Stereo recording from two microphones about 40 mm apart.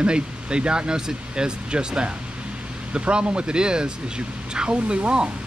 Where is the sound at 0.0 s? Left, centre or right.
Right.